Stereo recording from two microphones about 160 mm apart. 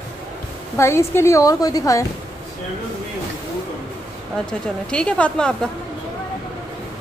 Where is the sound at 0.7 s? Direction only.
15° left (ahead or behind).